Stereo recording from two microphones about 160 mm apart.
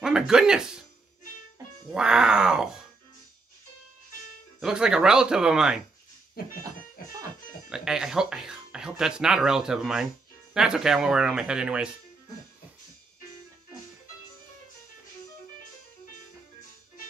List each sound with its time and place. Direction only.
0.0 s speech: 5° right (ahead or behind)
1.9 s speech: 5° right (ahead or behind)
4.6 s speech: 5° right (ahead or behind)
6.6 s music: 20° right (ahead or behind)
7.7 s speech: 5° right (ahead or behind)